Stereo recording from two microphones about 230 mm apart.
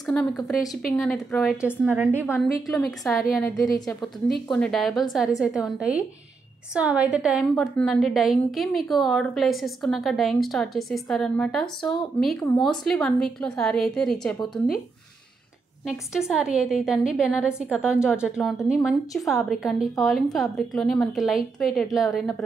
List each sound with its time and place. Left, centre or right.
0.0 s a woman's voice: centre
2.2 s a woman's voice: centre
4.5 s a woman's voice: centre
16.1 s a woman's voice: centre